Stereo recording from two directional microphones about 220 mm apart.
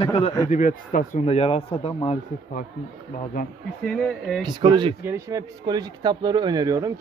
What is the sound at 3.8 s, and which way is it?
Speech, centre (ahead or behind).